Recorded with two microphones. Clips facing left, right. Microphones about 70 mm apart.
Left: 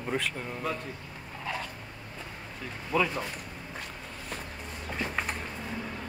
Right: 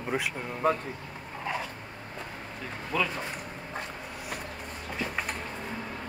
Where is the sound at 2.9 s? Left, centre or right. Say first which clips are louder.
Left 2 dB; centre.